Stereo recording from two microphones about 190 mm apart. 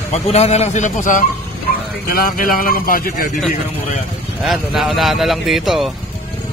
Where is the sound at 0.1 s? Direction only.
35° left (ahead or behind).